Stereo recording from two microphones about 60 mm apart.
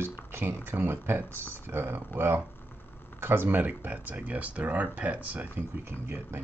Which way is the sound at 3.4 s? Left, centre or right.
Right.